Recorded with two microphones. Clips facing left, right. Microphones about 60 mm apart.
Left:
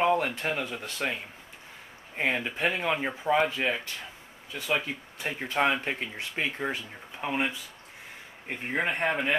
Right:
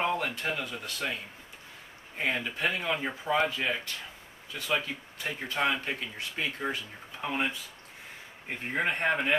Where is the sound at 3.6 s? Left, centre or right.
Left.